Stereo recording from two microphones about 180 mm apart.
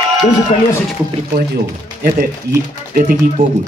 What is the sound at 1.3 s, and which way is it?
Speech, 60° right (ahead or behind).